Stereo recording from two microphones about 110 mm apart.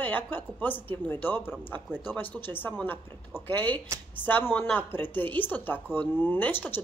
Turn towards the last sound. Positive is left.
turn(degrees=20)  # may be behind; listen again after turning